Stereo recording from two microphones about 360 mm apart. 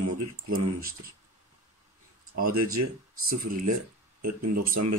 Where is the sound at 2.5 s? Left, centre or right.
Right.